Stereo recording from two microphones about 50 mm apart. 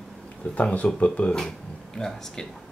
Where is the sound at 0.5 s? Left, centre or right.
Left.